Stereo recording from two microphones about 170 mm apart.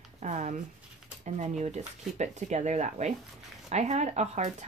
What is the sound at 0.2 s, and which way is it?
Speech, 45° right (ahead or behind).